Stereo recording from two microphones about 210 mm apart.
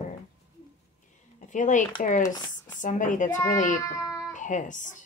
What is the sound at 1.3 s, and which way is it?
Speech, 35° left (ahead or behind).